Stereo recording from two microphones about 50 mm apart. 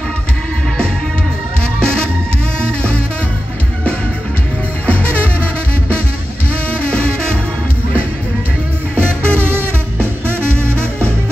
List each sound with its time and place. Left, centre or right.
4.8 s music: left
6.7 s music: left
9.3 s music: right